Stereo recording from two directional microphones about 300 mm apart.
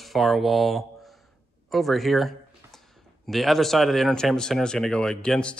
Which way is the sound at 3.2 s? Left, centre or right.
Centre.